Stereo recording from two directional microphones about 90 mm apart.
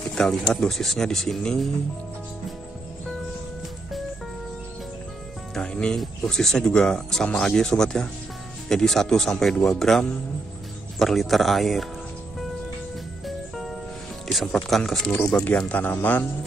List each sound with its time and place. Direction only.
0.1 s pigeon: 5° left (ahead or behind)
0.4 s speech: 5° left (ahead or behind)
5.5 s speech: 10° left (ahead or behind)
14.2 s speech: centre (ahead or behind); by 16.3 s 20° left (ahead or behind)